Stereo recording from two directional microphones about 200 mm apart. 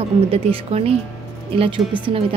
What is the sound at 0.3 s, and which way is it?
Speech, 30° right (ahead or behind).